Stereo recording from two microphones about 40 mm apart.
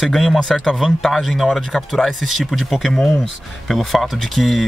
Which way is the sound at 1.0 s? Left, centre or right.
Centre.